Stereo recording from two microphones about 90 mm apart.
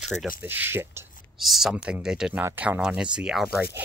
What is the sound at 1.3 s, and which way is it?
Speech, centre (ahead or behind).